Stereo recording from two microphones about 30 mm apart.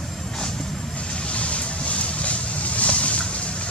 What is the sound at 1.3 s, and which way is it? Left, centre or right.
Vehicle, left.